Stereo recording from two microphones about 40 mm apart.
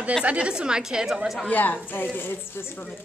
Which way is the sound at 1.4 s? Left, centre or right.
Left.